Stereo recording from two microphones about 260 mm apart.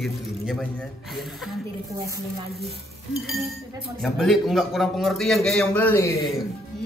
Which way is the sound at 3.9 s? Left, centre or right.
Centre.